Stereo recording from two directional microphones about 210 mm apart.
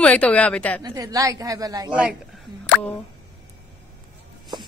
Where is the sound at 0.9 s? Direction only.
15° right (ahead or behind).